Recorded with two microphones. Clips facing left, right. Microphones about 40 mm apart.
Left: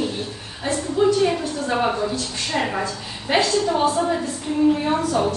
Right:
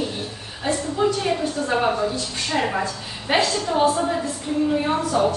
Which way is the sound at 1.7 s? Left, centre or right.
Centre.